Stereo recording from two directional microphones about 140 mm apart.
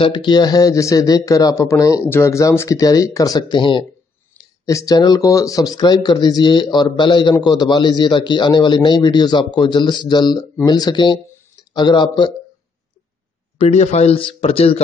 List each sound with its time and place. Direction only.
0.0 s a man's voice: 35° left (ahead or behind)
4.4 s a man's voice: 25° left (ahead or behind)
13.6 s speech: 50° left (ahead or behind)